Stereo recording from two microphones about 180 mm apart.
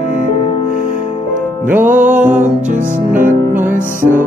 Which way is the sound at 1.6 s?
10° right (ahead or behind).